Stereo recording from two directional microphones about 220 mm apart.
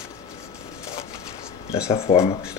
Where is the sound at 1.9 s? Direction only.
25° left (ahead or behind).